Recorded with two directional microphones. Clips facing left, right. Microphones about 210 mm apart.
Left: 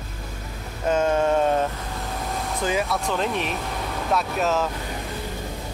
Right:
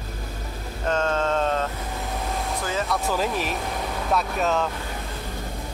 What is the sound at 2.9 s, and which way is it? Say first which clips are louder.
Speech: even; 5° right (ahead or behind).